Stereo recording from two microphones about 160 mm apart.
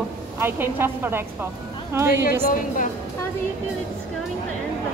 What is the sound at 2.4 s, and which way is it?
Speech, 55° left (ahead or behind).